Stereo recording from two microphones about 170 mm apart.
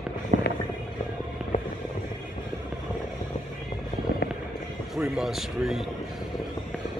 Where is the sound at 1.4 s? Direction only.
5° right (ahead or behind).